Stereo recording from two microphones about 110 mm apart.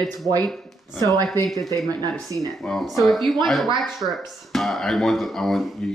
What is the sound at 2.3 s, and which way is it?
Speech, 40° right (ahead or behind).